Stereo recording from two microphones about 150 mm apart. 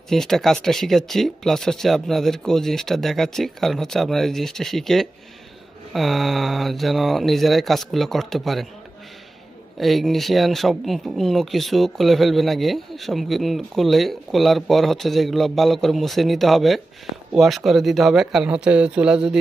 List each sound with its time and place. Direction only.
0.1 s speech: 5° left (ahead or behind)
9.8 s speech: centre (ahead or behind)